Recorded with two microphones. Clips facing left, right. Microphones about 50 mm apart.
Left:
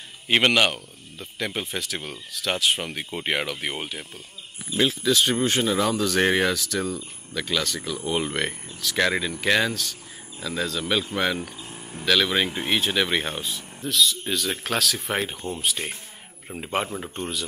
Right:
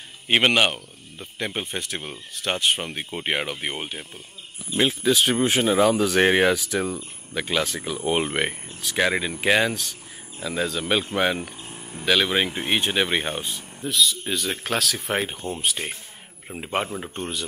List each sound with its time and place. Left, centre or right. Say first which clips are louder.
0.3 s speech: right 1 dB; centre
11.7 s a sound: even; centre
12.0 s speech: right 1 dB; centre